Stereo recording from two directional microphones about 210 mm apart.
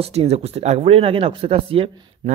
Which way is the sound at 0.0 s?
30° right (ahead or behind).